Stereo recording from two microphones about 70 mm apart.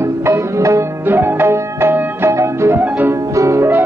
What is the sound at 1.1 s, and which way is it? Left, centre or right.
Music, right.